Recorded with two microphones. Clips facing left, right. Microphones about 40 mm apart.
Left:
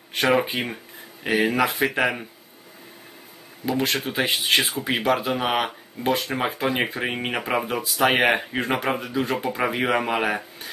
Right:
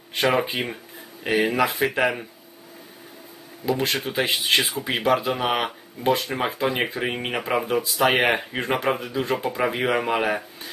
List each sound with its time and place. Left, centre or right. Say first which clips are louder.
0.2 s speech: left 1 dB; centre
3.6 s speech: even; centre